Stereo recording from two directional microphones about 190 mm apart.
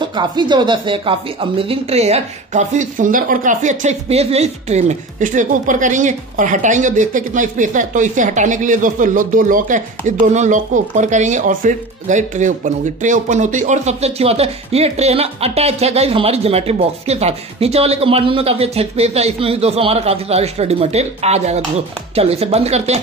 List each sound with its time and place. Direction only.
0.0 s speech: 25° right (ahead or behind)